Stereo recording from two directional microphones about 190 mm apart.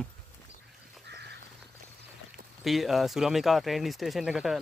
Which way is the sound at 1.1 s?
60° right (ahead or behind).